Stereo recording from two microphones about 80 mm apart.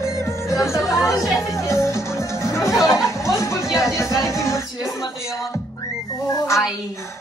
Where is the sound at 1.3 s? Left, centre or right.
Left.